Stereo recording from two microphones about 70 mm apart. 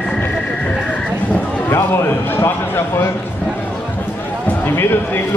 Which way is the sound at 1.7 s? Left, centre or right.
Left.